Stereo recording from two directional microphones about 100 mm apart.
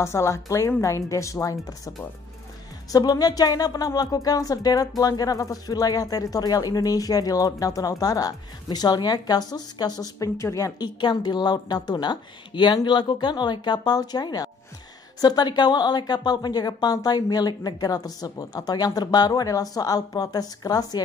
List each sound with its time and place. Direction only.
0.0 s speech: 30° left (ahead or behind)
2.9 s speech: 40° left (ahead or behind)
11.0 s a woman's voice: 50° left (ahead or behind)